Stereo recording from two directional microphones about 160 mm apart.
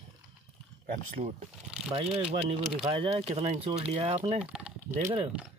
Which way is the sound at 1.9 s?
35° right (ahead or behind).